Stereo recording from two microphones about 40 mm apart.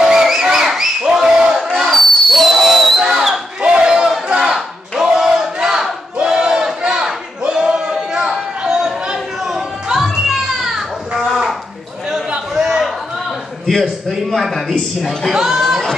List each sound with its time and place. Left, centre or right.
0.0 s crowd: centre
1.6 s a sound: centre
3.0 s a sound: centre
3.8 s battle cry: centre
7.5 s chatter: centre
9.9 s children playing: centre
12.5 s a sound: centre
14.4 s speech: centre
15.3 s chatter: centre